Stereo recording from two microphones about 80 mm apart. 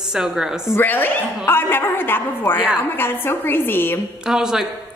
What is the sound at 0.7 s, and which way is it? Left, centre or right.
A woman's voice, left.